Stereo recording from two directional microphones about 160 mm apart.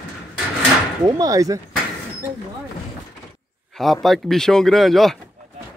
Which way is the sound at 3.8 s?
Centre (ahead or behind).